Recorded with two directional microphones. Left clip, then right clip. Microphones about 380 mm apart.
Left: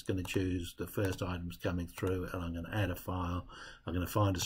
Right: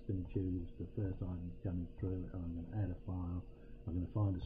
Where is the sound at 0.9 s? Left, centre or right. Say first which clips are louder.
Left 10 dB; centre.